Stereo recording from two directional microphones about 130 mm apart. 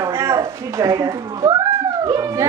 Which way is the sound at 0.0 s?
25° right (ahead or behind).